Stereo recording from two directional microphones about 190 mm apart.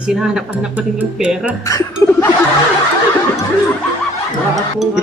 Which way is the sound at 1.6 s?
15° left (ahead or behind).